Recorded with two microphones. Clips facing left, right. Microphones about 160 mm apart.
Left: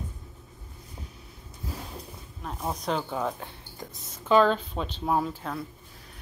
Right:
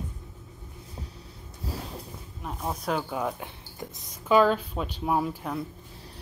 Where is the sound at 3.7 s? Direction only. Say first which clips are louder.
Right 2 dB; 20° right (ahead or behind).